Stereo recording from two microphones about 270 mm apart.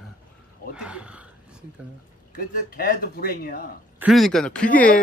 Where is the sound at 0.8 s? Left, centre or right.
Centre.